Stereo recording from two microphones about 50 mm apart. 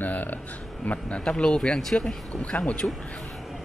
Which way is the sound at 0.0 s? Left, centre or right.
Left.